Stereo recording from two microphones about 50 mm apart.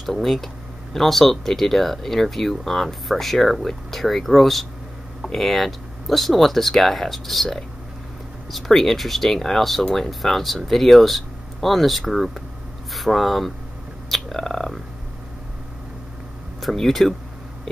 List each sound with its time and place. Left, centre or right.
0.0 s speech: centre
16.6 s speech: centre